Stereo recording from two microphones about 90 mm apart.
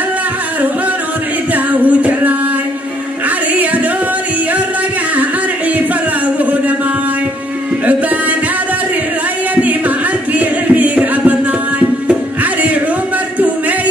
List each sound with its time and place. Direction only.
1.5 s music: 20° right (ahead or behind)
5.8 s a sound: 15° right (ahead or behind)
9.6 s music: 15° right (ahead or behind)